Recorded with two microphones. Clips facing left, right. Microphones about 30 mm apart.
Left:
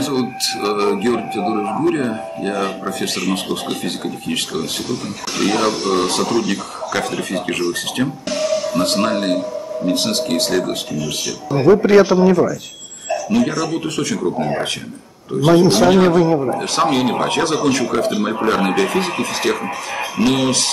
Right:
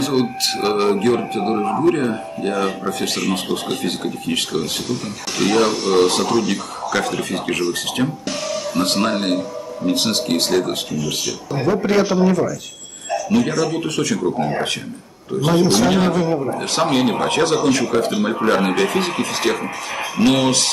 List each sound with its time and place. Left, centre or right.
0.0 s speech: centre
11.5 s a man's voice: centre
12.0 s speech: left
13.3 s speech: centre
15.4 s a man's voice: centre
16.1 s speech: left
16.5 s speech: centre